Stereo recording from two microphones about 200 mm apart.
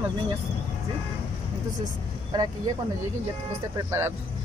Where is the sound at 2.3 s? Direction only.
20° right (ahead or behind).